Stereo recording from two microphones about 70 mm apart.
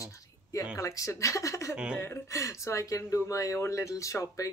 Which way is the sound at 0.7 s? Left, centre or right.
Left.